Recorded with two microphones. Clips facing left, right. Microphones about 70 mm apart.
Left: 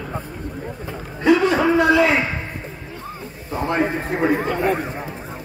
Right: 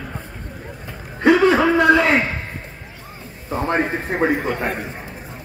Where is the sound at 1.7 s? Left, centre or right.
Right.